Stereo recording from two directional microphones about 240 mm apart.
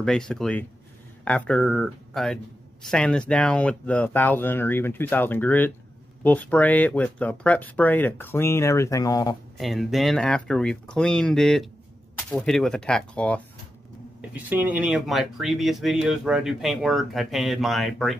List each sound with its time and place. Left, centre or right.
0.0 s speech: centre
9.6 s speech: centre
14.3 s speech: centre